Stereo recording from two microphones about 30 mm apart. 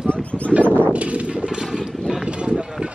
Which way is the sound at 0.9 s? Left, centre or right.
Right.